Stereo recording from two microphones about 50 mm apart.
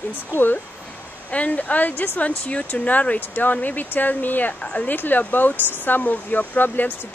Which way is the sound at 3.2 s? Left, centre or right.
Left.